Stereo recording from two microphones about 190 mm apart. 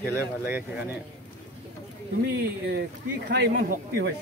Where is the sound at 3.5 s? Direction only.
50° right (ahead or behind).